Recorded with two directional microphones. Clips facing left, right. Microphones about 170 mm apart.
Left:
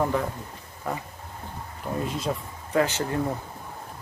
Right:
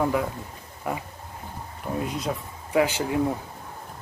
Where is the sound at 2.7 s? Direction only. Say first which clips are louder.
Right 1 dB; 10° right (ahead or behind).